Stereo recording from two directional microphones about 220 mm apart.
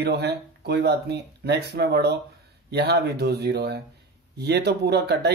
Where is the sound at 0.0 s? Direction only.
50° right (ahead or behind).